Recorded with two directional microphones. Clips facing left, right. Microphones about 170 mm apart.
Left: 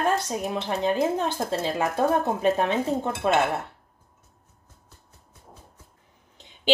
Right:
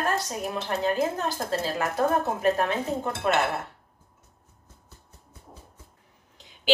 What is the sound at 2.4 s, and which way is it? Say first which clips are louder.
Speech: left 1 dB; 25° left (ahead or behind).